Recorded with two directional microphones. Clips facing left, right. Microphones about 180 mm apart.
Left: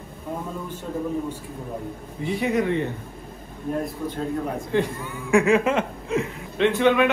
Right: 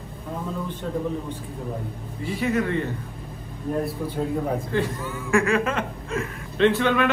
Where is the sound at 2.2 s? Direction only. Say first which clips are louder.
Left 2 dB; 15° left (ahead or behind).